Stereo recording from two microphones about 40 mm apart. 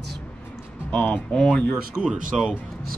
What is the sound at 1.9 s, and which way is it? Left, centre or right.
Speech, right.